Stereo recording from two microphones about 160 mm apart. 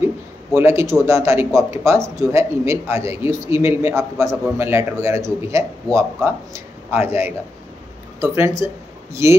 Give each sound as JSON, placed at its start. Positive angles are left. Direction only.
{"t": 0.6, "sound": "a man's voice", "side_deg": -15}